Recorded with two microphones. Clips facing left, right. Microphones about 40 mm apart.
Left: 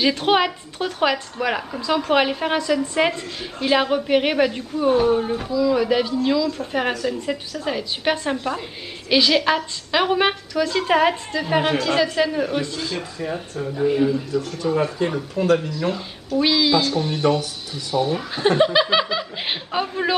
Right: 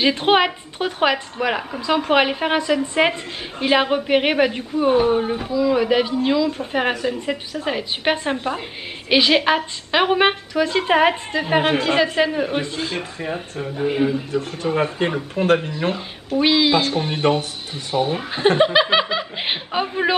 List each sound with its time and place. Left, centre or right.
0.0 s a woman's voice: right
1.9 s a woman's voice: right